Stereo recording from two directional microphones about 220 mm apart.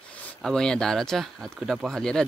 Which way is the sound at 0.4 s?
Centre (ahead or behind).